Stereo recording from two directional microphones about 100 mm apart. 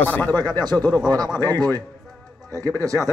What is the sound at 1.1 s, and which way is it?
Speech, 40° right (ahead or behind).